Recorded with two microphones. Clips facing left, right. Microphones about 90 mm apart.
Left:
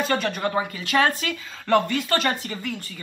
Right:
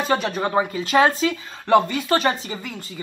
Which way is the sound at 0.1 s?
20° right (ahead or behind).